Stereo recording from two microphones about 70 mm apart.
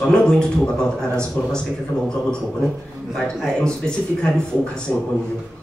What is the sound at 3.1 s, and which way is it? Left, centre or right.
Speech, centre.